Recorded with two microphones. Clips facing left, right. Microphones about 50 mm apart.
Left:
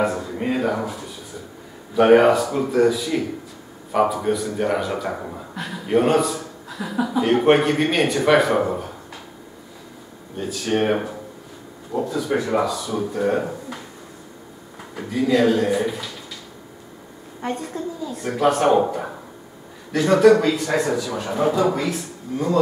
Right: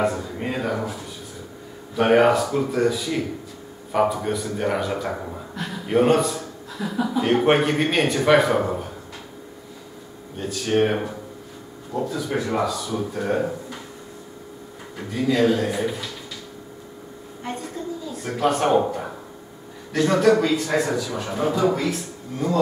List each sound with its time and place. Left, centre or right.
0.0 s a man's voice: centre
10.3 s a man's voice: centre
15.0 s a man's voice: centre
17.8 s a man's voice: centre